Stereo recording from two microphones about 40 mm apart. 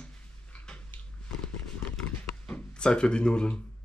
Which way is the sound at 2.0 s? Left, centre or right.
Left.